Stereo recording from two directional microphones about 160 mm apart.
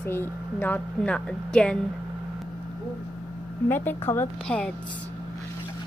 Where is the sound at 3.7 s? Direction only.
15° left (ahead or behind).